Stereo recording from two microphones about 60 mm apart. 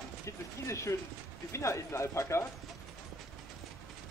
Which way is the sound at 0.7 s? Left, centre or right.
Left.